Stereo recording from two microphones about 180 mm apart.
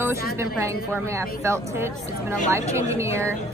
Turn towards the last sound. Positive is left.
turn(degrees=-15)  # may be behind; listen again after turning